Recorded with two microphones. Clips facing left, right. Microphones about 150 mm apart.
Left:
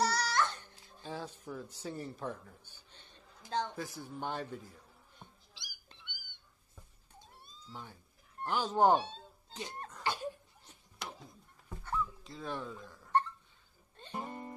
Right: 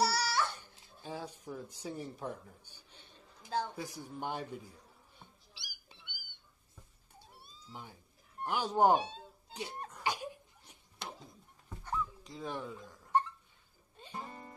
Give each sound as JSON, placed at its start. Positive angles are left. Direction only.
{"t": 0.0, "sound": "music", "side_deg": -10}
{"t": 5.5, "sound": "cat", "side_deg": -10}
{"t": 11.8, "sound": "dog", "side_deg": -15}
{"t": 14.1, "sound": "music", "side_deg": 20}